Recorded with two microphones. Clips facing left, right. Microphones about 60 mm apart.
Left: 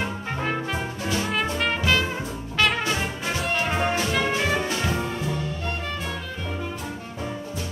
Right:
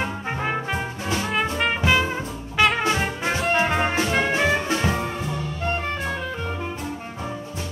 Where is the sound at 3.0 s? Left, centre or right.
Right.